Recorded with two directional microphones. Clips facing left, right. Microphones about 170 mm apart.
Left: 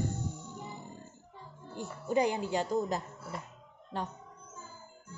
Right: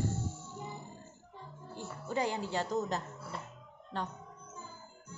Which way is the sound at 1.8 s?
15° left (ahead or behind).